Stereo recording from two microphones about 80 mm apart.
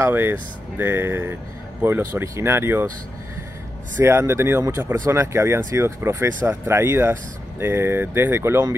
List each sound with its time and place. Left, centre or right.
0.1 s speech: right
4.0 s speech: right